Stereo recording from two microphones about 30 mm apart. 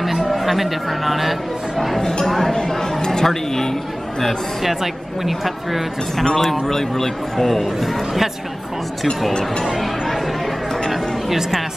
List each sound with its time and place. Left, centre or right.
0.0 s speech: centre
5.2 s speech: centre
6.1 s speech: centre
7.8 s speech: centre
9.8 s chatter: centre